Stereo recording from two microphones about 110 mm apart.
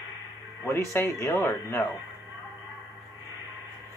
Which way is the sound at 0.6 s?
20° left (ahead or behind).